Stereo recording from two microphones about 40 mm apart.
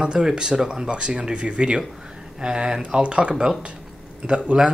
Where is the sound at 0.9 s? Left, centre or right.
Right.